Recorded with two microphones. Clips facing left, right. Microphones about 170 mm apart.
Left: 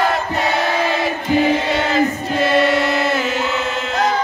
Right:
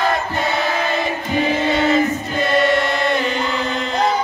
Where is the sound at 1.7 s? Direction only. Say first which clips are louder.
Right 1 dB; centre (ahead or behind).